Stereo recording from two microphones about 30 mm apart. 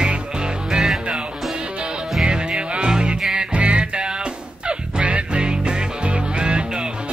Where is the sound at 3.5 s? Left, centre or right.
Right.